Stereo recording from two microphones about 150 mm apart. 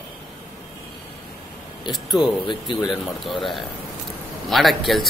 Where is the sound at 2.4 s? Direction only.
30° left (ahead or behind).